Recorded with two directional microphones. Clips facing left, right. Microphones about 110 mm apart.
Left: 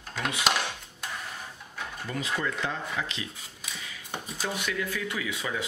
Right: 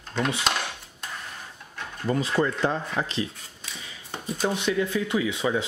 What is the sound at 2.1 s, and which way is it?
Speech, 35° right (ahead or behind).